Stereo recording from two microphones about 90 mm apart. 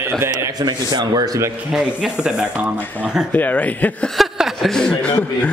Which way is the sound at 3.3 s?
15° left (ahead or behind).